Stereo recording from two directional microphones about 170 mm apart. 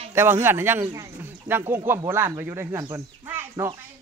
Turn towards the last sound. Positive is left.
turn(degrees=-15)  # may be behind; listen again after turning